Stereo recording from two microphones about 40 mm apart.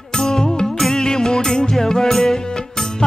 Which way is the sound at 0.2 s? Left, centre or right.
Centre.